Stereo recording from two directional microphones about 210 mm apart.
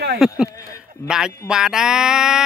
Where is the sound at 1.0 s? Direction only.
5° right (ahead or behind).